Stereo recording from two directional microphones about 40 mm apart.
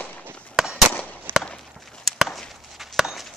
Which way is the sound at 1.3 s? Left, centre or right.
Right.